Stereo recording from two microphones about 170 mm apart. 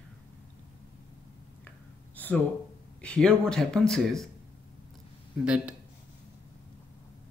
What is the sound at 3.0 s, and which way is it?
A man's voice, 5° left (ahead or behind).